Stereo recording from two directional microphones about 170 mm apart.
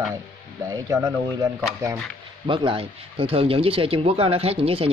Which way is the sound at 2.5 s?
30° right (ahead or behind).